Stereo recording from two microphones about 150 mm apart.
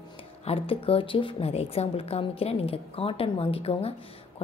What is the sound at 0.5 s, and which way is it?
A woman's voice, 40° left (ahead or behind).